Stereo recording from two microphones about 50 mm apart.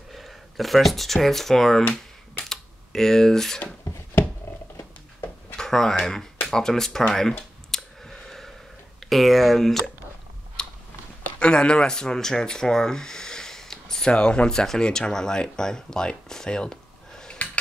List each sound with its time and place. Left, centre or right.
0.1 s speech: centre
5.6 s speech: centre
7.7 s clicking: centre
9.1 s speech: centre
10.6 s a sound: centre
11.3 s speech: left
17.4 s a sound: left